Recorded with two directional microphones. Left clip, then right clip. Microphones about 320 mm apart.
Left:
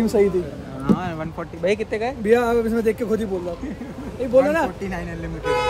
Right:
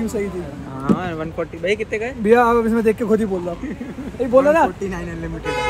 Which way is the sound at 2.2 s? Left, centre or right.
Centre.